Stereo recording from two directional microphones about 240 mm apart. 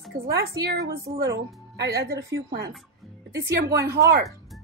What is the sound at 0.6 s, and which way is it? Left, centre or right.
Speech, centre.